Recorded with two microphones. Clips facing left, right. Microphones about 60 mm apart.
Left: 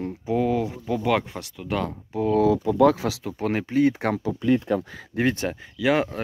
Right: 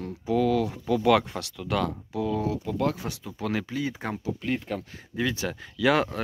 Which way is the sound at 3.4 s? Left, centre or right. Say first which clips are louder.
Left 7 dB; left.